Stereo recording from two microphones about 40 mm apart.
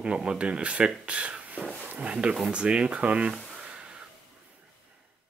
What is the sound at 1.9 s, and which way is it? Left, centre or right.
Speech, right.